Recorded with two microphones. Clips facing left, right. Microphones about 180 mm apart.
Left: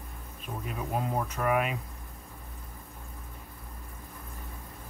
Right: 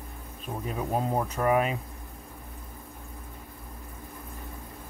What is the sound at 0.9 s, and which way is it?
Speech, 30° right (ahead or behind).